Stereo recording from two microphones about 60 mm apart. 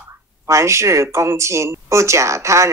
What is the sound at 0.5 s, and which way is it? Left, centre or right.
Speech, right.